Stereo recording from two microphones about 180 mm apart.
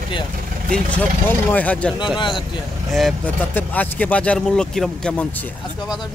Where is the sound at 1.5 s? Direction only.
10° left (ahead or behind).